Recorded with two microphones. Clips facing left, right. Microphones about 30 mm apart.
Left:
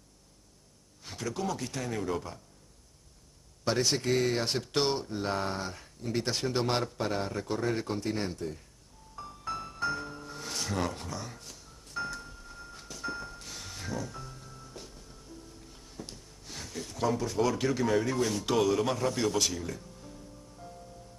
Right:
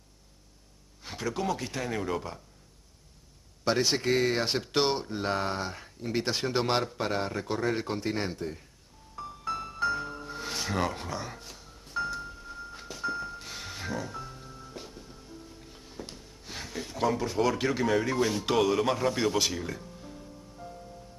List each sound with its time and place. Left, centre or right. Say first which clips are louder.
1.0 s speech: right 3 dB; centre
3.6 s speech: right 2 dB; centre
9.1 s music: right 3 dB; centre